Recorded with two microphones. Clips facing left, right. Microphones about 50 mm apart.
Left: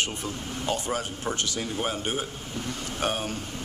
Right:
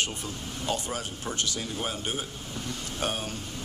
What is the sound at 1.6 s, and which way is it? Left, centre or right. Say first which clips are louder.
A man's voice: left 3 dB; left.